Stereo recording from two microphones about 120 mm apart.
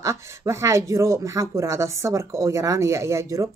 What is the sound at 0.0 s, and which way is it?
Speech, 25° right (ahead or behind).